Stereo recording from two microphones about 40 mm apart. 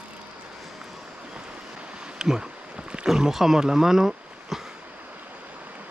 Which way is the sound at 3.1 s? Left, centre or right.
Centre.